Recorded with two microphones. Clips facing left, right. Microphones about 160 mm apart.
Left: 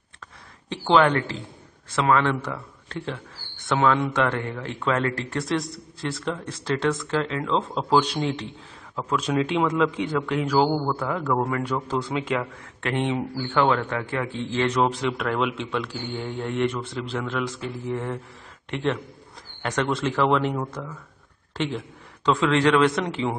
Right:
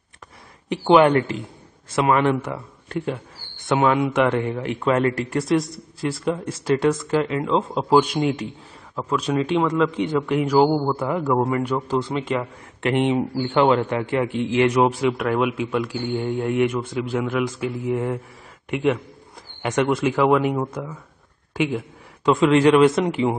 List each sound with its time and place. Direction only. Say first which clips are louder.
0.7 s speech: right 4 dB; 15° right (ahead or behind); by 10.0 s centre (ahead or behind)
10.1 s speech: right 6 dB; 10° right (ahead or behind)
12.0 s speech: right 2 dB; centre (ahead or behind)
12.4 s speech: right 2 dB; 15° right (ahead or behind)